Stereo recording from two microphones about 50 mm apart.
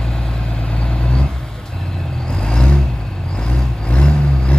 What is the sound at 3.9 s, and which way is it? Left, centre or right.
Vehicle, left.